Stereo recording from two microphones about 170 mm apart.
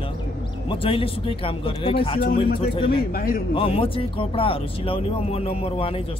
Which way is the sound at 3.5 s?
35° left (ahead or behind).